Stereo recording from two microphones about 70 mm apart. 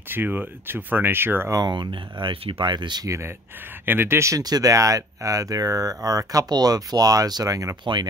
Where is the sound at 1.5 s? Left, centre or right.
Right.